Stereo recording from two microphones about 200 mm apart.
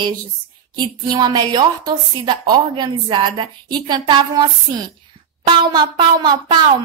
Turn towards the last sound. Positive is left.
turn(degrees=-20)  # may be behind; listen again after turning